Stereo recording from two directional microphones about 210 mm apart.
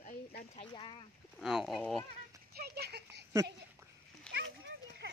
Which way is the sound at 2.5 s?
50° right (ahead or behind).